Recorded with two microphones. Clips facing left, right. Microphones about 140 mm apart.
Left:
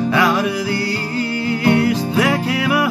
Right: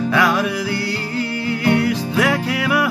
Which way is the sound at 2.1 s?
20° left (ahead or behind).